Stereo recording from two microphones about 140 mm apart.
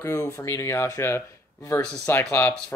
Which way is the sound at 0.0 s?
20° left (ahead or behind).